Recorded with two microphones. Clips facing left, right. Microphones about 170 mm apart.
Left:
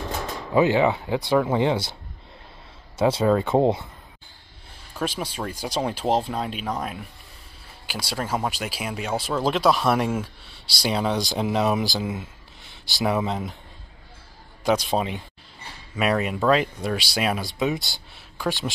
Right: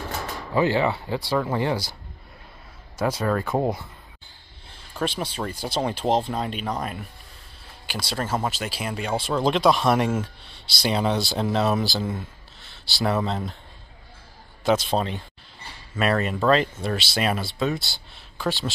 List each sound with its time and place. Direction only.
0.5 s speech: 15° left (ahead or behind)
3.0 s speech: 25° left (ahead or behind)
4.6 s speech: 10° left (ahead or behind)
12.6 s a sound: 15° left (ahead or behind)
13.1 s speech: 15° left (ahead or behind)
14.6 s speech: 10° left (ahead or behind)